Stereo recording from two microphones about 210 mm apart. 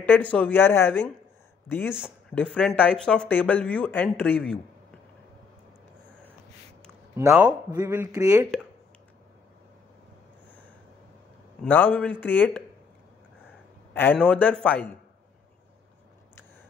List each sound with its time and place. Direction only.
0.0 s speech: 10° left (ahead or behind)
7.2 s a man's voice: 5° right (ahead or behind)
11.6 s speech: 10° left (ahead or behind)
13.9 s speech: 10° left (ahead or behind)